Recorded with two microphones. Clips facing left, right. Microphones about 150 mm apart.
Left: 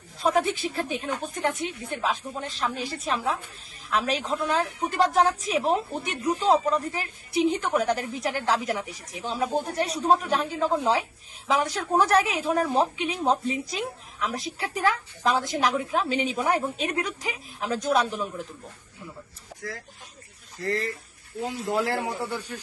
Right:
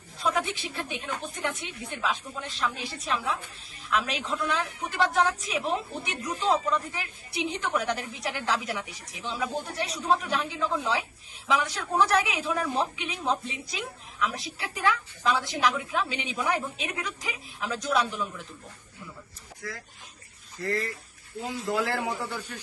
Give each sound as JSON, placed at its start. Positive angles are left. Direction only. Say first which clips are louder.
{"t": 0.2, "sound": "a woman's voice", "louder": "left 5 dB", "side_deg": 45}
{"t": 21.7, "sound": "a man's voice", "louder": "left 3 dB", "side_deg": 20}